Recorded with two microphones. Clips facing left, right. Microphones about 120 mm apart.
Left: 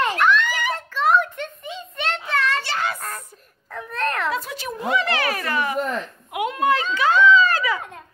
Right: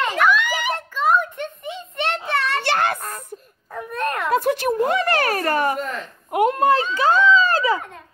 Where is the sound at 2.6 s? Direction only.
60° right (ahead or behind).